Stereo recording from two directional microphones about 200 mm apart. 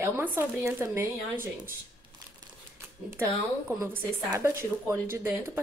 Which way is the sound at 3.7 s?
15° right (ahead or behind).